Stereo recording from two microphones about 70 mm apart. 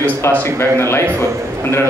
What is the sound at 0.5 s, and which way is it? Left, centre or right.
Speech, left.